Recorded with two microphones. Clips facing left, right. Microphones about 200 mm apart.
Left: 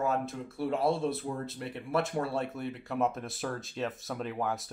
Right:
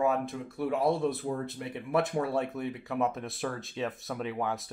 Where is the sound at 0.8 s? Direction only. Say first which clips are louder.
Right 2 dB; 15° right (ahead or behind).